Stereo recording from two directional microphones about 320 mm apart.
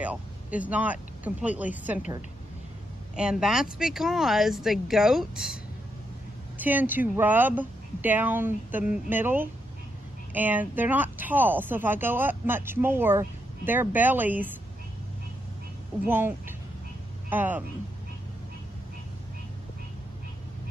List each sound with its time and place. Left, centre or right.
0.0 s speech: centre
3.2 s speech: centre
6.6 s speech: centre
16.1 s speech: centre